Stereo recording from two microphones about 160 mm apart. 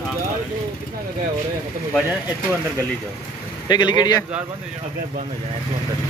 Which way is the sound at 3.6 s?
25° left (ahead or behind).